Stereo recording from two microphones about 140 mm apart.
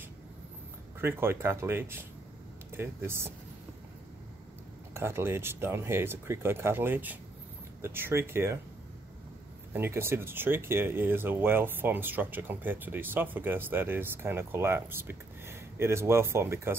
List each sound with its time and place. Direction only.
1.0 s speech: 15° right (ahead or behind)
4.9 s speech: 20° right (ahead or behind)
9.7 s speech: 15° right (ahead or behind)